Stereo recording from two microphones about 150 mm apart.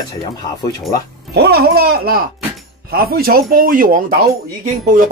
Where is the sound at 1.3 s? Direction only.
90° right; by 4.0 s 70° right (ahead or behind).